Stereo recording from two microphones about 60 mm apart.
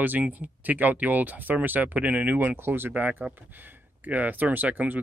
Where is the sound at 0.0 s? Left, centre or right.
Right.